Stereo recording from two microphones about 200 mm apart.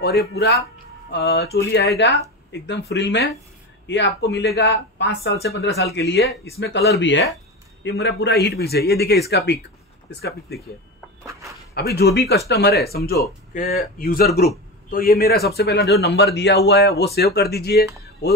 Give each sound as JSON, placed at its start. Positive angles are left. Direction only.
{"t": 0.0, "sound": "a man's voice", "side_deg": 50}
{"t": 11.7, "sound": "a man's voice", "side_deg": 55}